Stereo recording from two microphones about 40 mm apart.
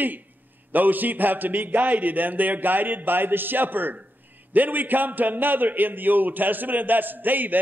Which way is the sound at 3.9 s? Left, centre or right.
Right.